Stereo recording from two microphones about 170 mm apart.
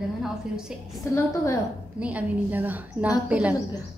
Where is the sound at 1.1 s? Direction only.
15° left (ahead or behind).